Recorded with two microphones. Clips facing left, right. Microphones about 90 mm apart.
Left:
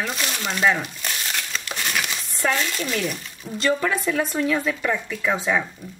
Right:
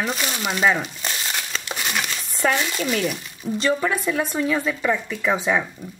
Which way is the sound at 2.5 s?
15° right (ahead or behind).